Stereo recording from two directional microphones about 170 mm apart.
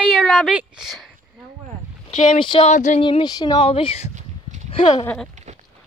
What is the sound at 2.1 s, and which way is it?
Speech, 45° left (ahead or behind).